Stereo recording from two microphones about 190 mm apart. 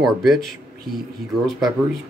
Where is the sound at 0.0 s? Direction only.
Centre (ahead or behind).